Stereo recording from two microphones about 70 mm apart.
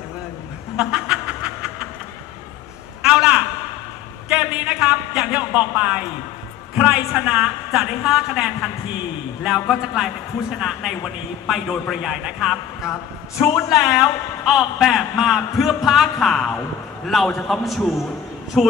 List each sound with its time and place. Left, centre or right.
0.7 s snicker: centre
3.0 s a sound: centre
7.1 s a woman's voice: centre
14.4 s speech: centre